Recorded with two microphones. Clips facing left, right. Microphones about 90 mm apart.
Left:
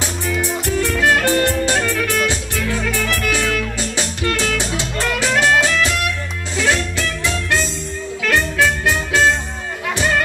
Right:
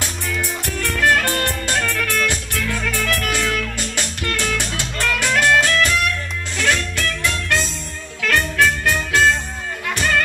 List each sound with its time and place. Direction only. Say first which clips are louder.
0.0 s music: left 4 dB; 10° left (ahead or behind)